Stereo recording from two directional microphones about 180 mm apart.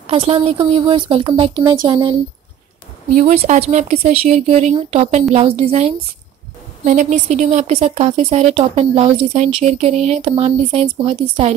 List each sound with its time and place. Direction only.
0.0 s speech: 30° right (ahead or behind)
3.2 s speech: 40° right (ahead or behind)